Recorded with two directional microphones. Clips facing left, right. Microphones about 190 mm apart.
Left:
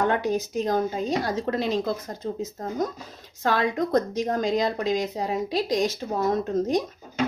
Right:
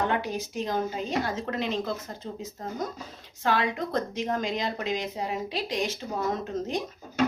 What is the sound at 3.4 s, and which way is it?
Speech, 40° left (ahead or behind).